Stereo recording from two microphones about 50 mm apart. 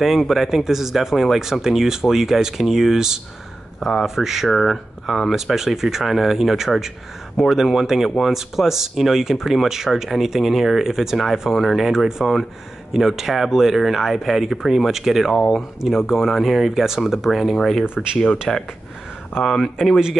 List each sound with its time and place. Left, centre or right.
0.0 s speech: centre
17.8 s speech: centre
18.5 s speech: centre